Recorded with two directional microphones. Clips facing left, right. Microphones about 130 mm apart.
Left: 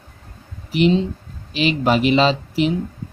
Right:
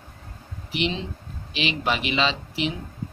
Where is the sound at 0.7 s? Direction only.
40° left (ahead or behind).